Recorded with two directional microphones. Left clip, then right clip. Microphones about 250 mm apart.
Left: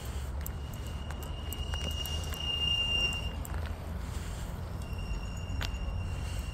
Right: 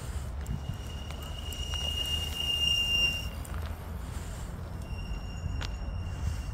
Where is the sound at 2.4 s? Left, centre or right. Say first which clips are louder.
Right 2 dB; right.